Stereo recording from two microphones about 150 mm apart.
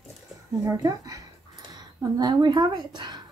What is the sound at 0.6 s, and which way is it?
Speech, 20° right (ahead or behind).